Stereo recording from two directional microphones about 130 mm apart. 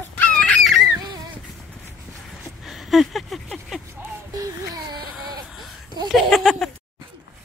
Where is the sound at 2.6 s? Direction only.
Centre (ahead or behind).